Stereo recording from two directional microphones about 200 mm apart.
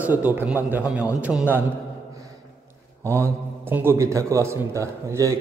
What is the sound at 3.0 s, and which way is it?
A man's voice, 10° right (ahead or behind).